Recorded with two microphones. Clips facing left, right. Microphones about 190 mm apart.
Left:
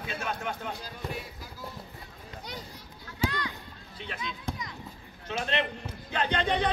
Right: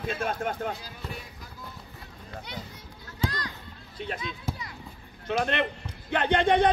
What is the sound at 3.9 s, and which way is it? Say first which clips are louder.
Speech: right 4 dB; 40° right (ahead or behind).